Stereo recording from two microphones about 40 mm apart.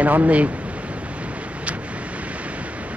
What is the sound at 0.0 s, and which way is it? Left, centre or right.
Speech, right.